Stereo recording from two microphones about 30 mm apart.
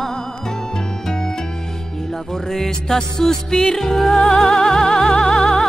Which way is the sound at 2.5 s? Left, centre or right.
Centre.